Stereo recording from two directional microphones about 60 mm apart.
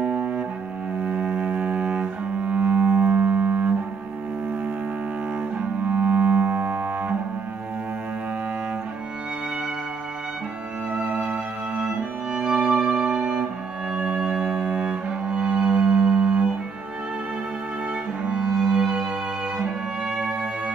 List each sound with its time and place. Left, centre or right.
0.0 s music: right
1.0 s cello: centre
5.9 s cello: right
10.9 s music: right
18.4 s cello: centre
19.6 s music: centre